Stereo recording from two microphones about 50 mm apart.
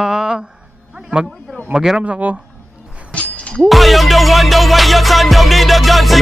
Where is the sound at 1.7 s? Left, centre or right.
Centre.